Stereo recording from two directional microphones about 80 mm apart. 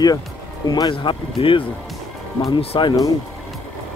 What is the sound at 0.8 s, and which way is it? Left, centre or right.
Speech, left.